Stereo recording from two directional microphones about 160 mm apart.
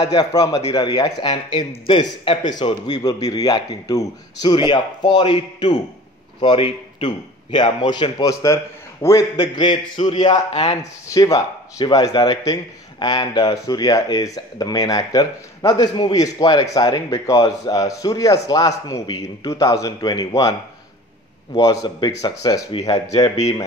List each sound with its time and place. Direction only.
0.0 s a man's voice: 25° left (ahead or behind)
10.5 s speech: 45° left (ahead or behind)
11.1 s speech: 20° left (ahead or behind)
21.5 s speech: 25° left (ahead or behind)